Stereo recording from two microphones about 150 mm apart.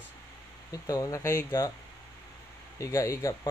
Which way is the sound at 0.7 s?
20° left (ahead or behind).